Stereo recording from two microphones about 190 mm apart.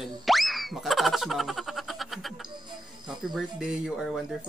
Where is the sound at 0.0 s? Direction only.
Centre (ahead or behind).